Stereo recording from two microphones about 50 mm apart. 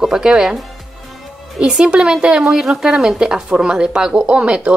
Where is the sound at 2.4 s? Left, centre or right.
Centre.